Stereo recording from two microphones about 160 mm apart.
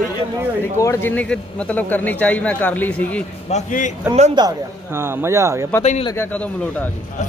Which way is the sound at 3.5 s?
50° left (ahead or behind).